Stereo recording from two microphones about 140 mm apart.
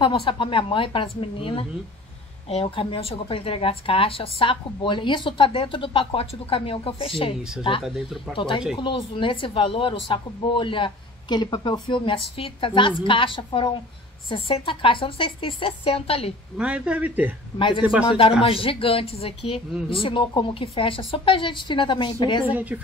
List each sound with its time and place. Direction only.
0.0 s speech: 35° left (ahead or behind)
7.8 s speech: centre (ahead or behind)
8.4 s speech: 35° left (ahead or behind)
16.5 s speech: 10° right (ahead or behind)
17.6 s speech: 35° left (ahead or behind)
22.5 s speech: 10° right (ahead or behind)